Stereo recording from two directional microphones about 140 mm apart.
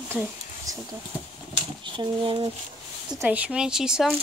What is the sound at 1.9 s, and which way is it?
Speech, 35° right (ahead or behind).